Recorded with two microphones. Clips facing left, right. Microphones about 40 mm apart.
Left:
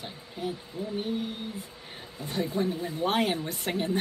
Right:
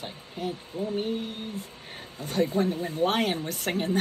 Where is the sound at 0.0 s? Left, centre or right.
Right.